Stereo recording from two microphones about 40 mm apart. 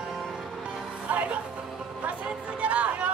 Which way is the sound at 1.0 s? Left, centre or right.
Right.